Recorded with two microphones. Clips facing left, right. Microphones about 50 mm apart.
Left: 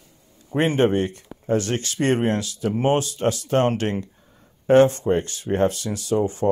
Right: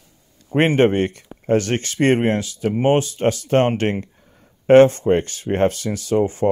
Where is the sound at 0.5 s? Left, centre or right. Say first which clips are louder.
Right 4 dB; right.